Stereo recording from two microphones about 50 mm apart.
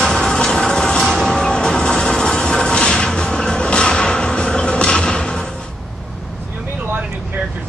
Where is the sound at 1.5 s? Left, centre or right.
Centre.